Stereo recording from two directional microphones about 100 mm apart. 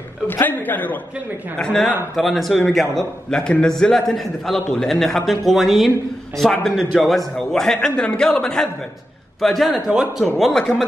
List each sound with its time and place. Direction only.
0.3 s a man's voice: 20° left (ahead or behind)
1.6 s a man's voice: 5° left (ahead or behind)